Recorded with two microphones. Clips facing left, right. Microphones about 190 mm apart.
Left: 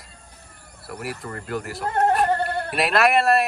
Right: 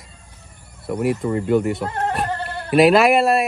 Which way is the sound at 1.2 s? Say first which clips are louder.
Right 12 dB; centre (ahead or behind).